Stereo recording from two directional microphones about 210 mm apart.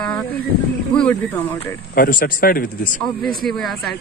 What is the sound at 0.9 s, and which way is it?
Speech, 10° left (ahead or behind).